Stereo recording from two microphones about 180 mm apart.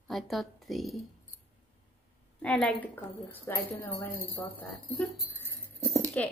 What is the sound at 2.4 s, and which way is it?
A woman's voice, 5° left (ahead or behind).